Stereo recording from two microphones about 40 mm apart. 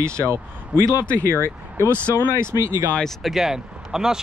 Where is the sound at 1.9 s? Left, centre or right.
Right.